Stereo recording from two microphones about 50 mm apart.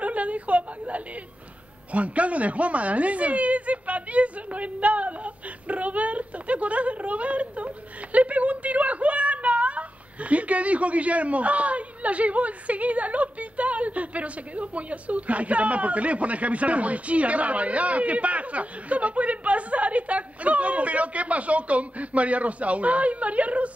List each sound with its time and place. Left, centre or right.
0.0 s whimper: right
1.9 s a woman's voice: right